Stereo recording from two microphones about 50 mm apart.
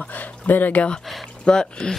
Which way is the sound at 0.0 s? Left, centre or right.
Left.